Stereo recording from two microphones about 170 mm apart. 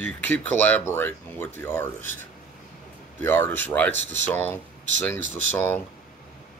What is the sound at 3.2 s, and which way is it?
Speech, 10° left (ahead or behind).